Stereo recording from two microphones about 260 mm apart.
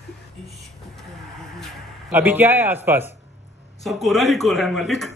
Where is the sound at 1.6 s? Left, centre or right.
Centre.